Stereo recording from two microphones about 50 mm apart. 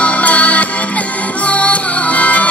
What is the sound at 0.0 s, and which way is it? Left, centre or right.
Music, left.